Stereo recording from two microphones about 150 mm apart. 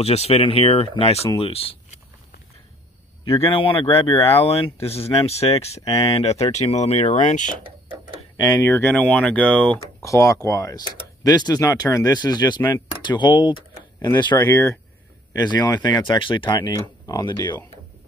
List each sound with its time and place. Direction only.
0.0 s speech: 45° left (ahead or behind)
3.3 s speech: 40° left (ahead or behind); by 7.5 s 55° left (ahead or behind)
8.4 s speech: 30° left (ahead or behind)
8.6 s speech: 15° left (ahead or behind)
10.0 s speech: 20° left (ahead or behind)